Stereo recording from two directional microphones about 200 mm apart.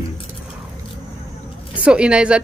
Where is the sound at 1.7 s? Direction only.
5° right (ahead or behind).